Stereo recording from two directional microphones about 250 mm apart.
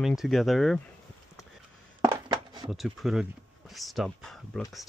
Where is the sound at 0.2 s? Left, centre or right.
Centre.